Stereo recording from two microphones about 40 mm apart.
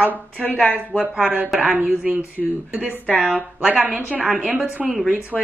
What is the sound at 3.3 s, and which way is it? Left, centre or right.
A woman's voice, right.